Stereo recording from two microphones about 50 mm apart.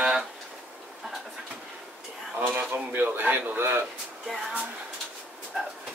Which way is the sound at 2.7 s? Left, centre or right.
Right.